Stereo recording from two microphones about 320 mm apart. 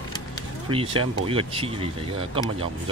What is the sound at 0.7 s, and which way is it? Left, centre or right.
Speech, centre.